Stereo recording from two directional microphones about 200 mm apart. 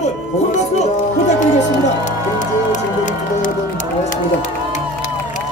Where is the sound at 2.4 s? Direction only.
40° left (ahead or behind).